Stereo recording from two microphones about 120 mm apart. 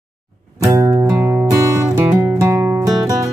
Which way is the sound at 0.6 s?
30° right (ahead or behind).